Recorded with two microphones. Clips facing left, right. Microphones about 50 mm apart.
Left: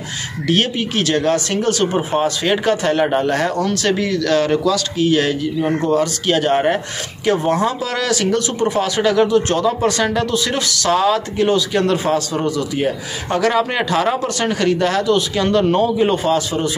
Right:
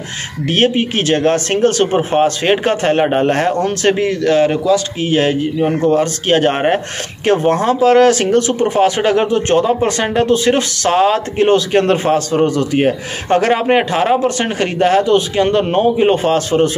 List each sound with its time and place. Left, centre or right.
0.5 s speech: right